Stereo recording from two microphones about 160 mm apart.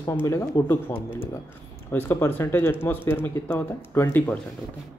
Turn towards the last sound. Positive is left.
turn(degrees=15)  # may be behind; listen again after turning